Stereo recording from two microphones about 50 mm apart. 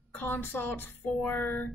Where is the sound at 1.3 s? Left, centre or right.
Left.